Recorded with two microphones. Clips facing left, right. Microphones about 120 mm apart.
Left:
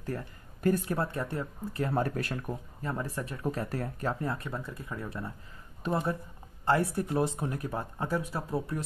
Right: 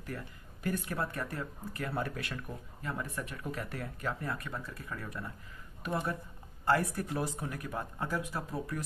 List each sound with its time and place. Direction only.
0.0 s speech: 35° left (ahead or behind)
2.0 s speech: 40° left (ahead or behind)